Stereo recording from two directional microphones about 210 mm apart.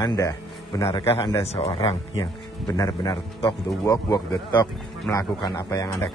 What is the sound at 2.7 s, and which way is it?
A man's voice, 15° left (ahead or behind).